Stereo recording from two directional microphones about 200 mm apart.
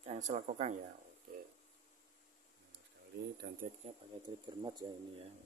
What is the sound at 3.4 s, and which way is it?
Speech, 50° right (ahead or behind).